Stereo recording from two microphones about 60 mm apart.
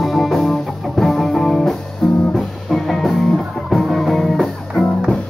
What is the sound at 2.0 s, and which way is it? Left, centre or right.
Music, centre.